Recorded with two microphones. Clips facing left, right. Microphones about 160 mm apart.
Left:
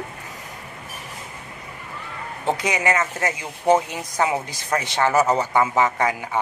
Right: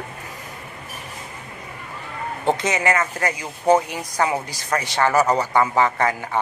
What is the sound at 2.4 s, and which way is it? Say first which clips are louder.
Speech: right 1 dB; 10° left (ahead or behind).